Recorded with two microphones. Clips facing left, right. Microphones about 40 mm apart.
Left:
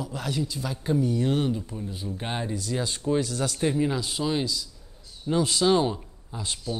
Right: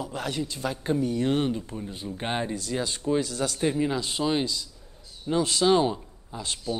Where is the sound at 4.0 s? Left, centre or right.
Centre.